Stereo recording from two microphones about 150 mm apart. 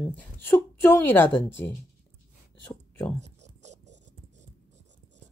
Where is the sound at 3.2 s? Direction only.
50° right (ahead or behind).